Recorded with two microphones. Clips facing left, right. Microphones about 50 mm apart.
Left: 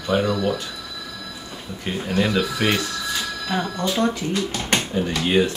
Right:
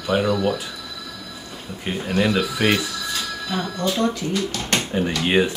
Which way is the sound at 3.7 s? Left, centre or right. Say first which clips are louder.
Right 2 dB; centre.